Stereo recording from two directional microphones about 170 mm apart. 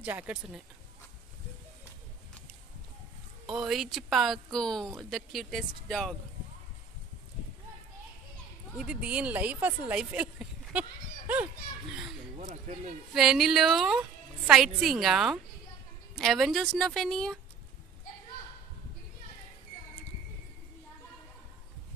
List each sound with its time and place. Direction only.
0.0 s speech: 10° right (ahead or behind)
3.4 s speech: 5° right (ahead or behind)
8.7 s speech: 5° right (ahead or behind)
12.4 s speech: 45° right (ahead or behind)
13.1 s speech: 5° right (ahead or behind)